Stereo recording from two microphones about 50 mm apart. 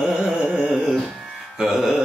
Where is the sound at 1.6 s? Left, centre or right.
Centre.